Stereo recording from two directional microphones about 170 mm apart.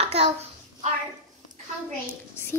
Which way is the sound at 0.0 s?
35° right (ahead or behind).